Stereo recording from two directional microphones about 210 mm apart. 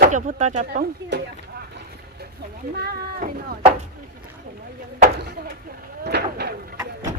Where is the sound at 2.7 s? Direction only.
45° right (ahead or behind).